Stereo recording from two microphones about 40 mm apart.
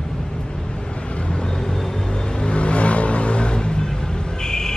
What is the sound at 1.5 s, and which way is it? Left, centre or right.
Vehicle, centre.